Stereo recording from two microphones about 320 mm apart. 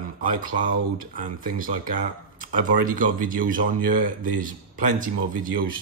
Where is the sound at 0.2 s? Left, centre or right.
Right.